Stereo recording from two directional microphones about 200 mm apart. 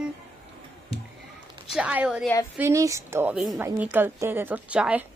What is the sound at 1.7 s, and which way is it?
A woman's voice, 5° right (ahead or behind).